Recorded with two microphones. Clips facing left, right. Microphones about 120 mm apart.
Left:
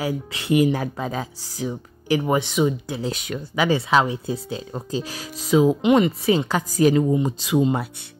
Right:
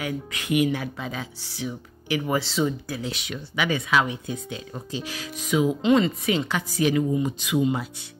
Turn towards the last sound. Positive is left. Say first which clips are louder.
# left 3 dB
turn(degrees=35)  # may be behind; listen again after turning